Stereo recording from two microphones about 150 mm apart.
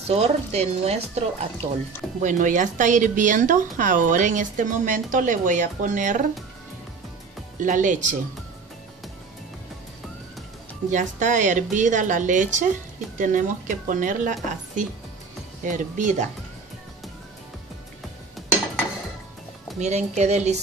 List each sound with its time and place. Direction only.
0.0 s speech: 45° right (ahead or behind)
2.2 s speech: 60° right (ahead or behind)
7.6 s speech: 60° right (ahead or behind)
10.9 s speech: 55° right (ahead or behind)
19.8 s speech: 50° right (ahead or behind)